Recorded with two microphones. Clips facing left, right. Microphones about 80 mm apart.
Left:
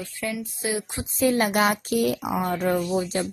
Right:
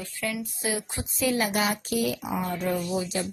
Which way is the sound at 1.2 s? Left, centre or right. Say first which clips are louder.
Left 4 dB; left.